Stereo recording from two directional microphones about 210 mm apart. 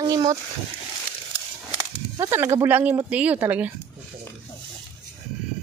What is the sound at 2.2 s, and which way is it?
Speech, 15° right (ahead or behind).